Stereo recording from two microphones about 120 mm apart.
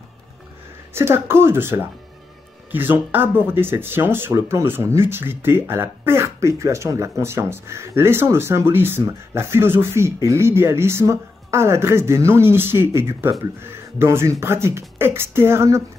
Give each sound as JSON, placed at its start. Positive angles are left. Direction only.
{"t": 0.9, "sound": "speech", "side_deg": -20}